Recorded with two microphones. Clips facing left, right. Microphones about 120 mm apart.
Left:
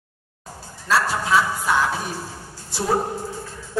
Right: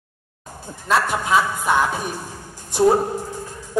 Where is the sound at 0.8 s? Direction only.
20° right (ahead or behind).